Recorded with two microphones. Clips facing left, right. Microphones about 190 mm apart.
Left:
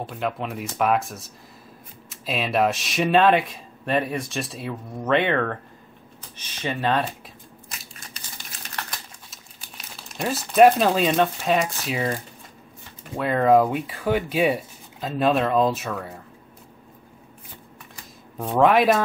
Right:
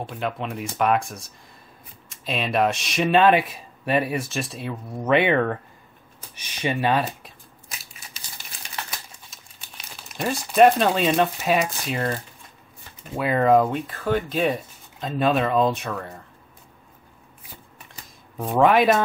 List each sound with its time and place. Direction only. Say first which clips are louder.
0.0 s speech: left 1 dB; centre (ahead or behind)
7.9 s crumpling: left 2 dB; 5° right (ahead or behind)
9.3 s speech: left 2 dB; centre (ahead or behind)
18.4 s speech: even; centre (ahead or behind)